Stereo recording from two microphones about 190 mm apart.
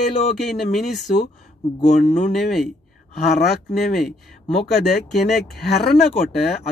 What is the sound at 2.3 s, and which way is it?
Speech, centre (ahead or behind).